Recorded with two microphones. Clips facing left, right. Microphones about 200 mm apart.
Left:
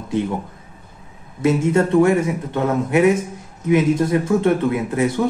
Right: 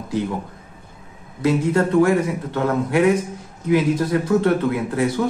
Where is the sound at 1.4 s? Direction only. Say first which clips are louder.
Left 2 dB; 25° left (ahead or behind).